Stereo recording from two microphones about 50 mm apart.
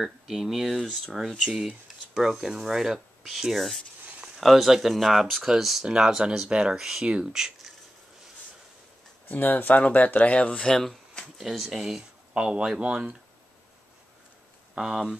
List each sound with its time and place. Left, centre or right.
0.0 s speech: centre
0.7 s speech: centre
1.4 s speech: centre
9.3 s speech: left
10.7 s speech: centre
11.3 s speech: centre
12.4 s speech: centre
14.8 s speech: centre